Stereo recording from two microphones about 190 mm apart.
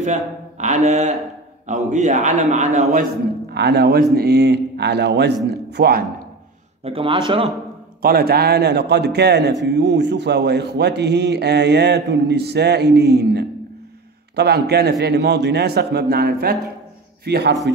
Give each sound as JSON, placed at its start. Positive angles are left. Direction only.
{"t": 0.0, "sound": "a man's voice", "side_deg": -40}
{"t": 3.5, "sound": "a man's voice", "side_deg": -60}
{"t": 6.8, "sound": "a man's voice", "side_deg": -30}
{"t": 8.0, "sound": "a man's voice", "side_deg": -55}